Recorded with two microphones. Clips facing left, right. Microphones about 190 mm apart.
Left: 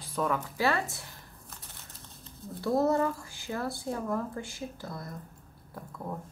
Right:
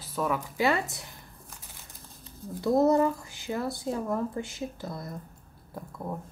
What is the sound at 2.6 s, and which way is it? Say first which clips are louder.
Speech: right 4 dB; 20° right (ahead or behind).